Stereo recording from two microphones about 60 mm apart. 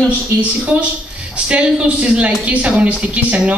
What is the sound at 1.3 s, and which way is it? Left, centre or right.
A woman's voice, centre.